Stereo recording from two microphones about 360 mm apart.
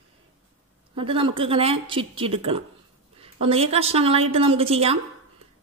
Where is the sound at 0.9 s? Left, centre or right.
Centre.